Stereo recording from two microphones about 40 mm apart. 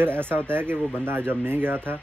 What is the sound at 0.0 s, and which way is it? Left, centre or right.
Speech, right.